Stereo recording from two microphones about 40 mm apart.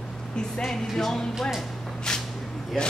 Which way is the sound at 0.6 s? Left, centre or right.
Centre.